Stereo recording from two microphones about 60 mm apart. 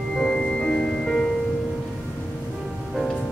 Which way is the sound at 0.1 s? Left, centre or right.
Centre.